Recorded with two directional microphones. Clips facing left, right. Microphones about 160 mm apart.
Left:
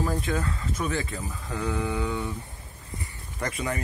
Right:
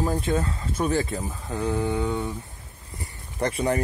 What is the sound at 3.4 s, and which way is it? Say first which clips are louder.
Speech: right 6 dB; 35° right (ahead or behind).